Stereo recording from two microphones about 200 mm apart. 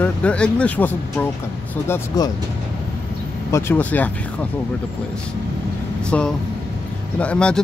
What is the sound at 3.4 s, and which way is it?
Speech, 15° left (ahead or behind).